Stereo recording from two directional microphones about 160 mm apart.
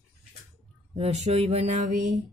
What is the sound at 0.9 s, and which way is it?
Mantra, 40° right (ahead or behind).